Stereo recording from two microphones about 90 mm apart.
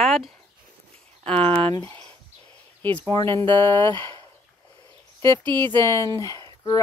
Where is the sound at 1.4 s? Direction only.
75° right (ahead or behind).